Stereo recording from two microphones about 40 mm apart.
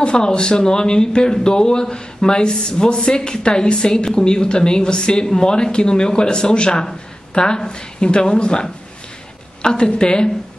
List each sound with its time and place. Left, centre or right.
0.0 s speech: left